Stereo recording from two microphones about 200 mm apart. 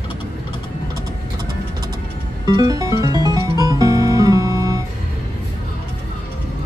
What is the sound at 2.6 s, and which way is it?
Music, 15° right (ahead or behind).